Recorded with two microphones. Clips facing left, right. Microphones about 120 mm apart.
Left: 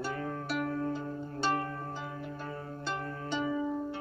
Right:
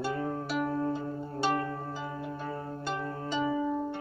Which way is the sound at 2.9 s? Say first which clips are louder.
Right 3 dB; 35° right (ahead or behind).